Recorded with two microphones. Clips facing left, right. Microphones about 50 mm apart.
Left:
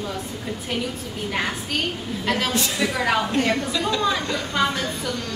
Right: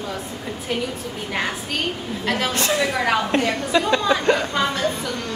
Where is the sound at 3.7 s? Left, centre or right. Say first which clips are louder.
Right 5 dB; right.